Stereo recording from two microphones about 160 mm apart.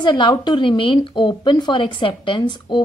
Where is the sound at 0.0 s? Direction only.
30° left (ahead or behind).